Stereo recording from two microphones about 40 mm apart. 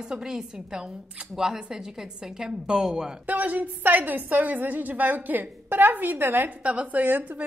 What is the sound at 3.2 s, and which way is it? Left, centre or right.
A woman's voice, right.